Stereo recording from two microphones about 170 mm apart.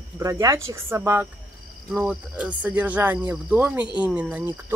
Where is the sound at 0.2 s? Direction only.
20° right (ahead or behind).